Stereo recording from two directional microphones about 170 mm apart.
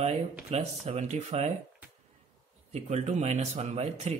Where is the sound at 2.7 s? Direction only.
40° right (ahead or behind).